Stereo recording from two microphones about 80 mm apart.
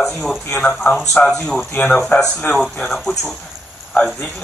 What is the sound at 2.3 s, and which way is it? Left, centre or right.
Speech, left.